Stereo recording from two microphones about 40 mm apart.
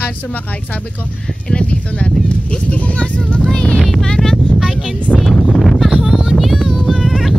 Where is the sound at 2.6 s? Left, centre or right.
Left.